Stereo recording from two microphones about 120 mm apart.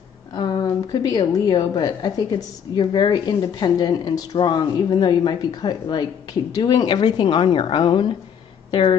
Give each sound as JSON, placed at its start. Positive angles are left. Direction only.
{"t": 0.3, "sound": "a woman's voice", "side_deg": 35}